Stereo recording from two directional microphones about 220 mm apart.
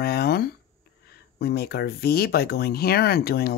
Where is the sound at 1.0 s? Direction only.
45° left (ahead or behind).